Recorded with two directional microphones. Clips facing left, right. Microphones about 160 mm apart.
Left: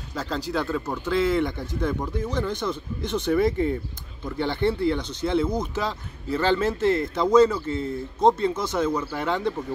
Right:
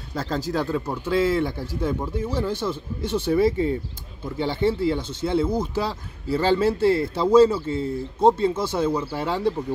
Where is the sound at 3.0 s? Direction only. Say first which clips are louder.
Right 2 dB; 30° right (ahead or behind).